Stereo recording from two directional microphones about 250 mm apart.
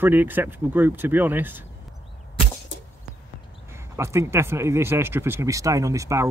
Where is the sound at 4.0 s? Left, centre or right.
Centre.